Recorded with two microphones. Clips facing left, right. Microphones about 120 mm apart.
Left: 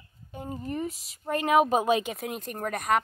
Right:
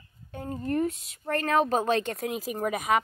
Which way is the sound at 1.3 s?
15° left (ahead or behind).